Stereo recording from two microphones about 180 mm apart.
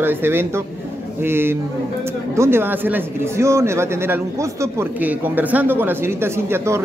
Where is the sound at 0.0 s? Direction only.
10° right (ahead or behind).